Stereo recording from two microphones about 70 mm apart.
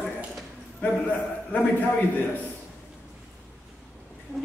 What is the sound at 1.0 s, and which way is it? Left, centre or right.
A man's voice, left.